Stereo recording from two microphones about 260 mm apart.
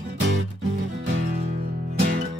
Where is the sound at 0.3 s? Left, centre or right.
Right.